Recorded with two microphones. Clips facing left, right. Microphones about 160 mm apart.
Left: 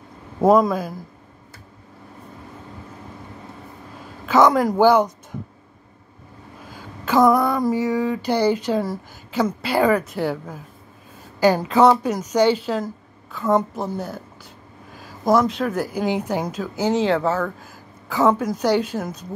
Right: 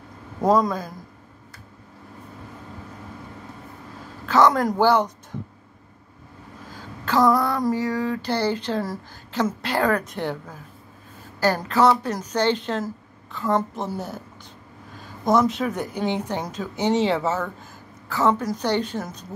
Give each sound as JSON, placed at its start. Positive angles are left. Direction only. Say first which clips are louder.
{"t": 0.5, "sound": "speech", "louder": "left 4 dB", "side_deg": 5}
{"t": 4.3, "sound": "a woman's voice", "louder": "left 2 dB", "side_deg": 15}
{"t": 7.1, "sound": "a sound", "louder": "left 3 dB", "side_deg": 15}
{"t": 7.7, "sound": "a woman's voice", "louder": "left 3 dB", "side_deg": 10}
{"t": 18.0, "sound": "a woman's voice", "louder": "left 3 dB", "side_deg": 10}